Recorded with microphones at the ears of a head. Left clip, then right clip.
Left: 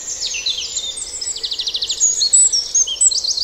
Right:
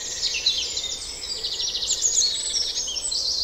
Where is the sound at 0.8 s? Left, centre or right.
Left.